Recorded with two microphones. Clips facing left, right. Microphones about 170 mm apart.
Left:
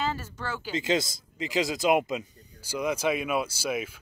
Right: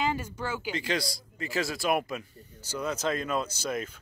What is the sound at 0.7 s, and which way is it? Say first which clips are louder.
Speech: left 4 dB; 20° left (ahead or behind).